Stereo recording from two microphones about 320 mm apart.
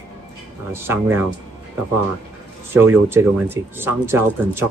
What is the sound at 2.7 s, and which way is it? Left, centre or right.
Speech, centre.